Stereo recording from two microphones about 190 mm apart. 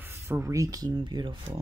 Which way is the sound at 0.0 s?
15° right (ahead or behind).